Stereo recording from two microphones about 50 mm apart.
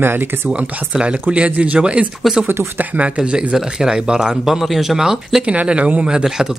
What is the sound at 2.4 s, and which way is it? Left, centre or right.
Speech, right.